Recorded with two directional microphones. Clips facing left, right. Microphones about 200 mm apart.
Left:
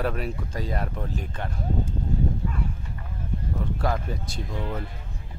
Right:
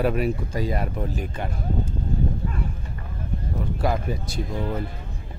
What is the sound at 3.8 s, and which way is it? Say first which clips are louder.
Speech: right 5 dB; 10° right (ahead or behind).